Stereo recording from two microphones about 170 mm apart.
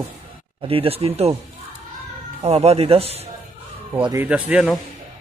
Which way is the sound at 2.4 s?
40° right (ahead or behind).